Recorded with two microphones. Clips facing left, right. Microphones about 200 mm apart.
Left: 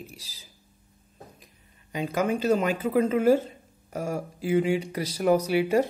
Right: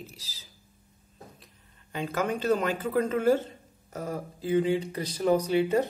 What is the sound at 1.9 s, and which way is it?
Speech, 10° left (ahead or behind).